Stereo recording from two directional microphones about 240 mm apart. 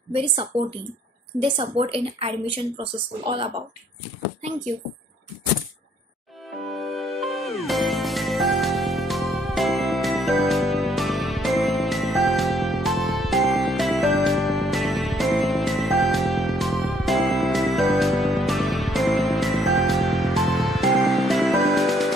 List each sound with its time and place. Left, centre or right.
0.1 s a woman's voice: right
6.8 s music: centre